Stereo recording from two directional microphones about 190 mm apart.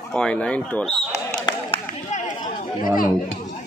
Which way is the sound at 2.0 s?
40° left (ahead or behind).